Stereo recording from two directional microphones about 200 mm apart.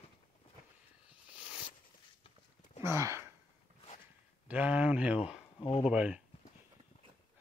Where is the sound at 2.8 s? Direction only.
15° right (ahead or behind).